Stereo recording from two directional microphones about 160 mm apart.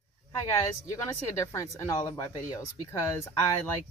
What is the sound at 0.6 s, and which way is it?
Speech, 20° left (ahead or behind).